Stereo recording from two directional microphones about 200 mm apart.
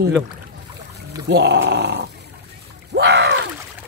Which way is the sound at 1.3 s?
55° right (ahead or behind).